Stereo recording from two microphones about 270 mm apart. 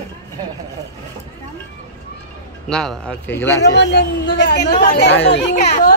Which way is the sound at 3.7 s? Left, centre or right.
Left.